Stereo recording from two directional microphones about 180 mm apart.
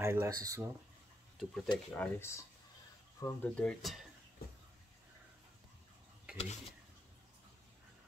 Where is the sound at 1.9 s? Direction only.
10° left (ahead or behind).